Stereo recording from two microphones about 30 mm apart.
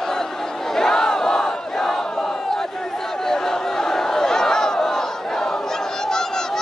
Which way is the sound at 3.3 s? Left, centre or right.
Centre.